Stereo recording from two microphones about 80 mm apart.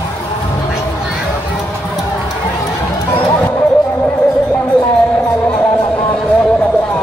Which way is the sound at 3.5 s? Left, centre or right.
Left.